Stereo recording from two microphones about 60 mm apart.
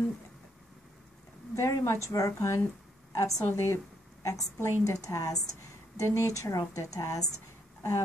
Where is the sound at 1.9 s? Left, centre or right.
Left.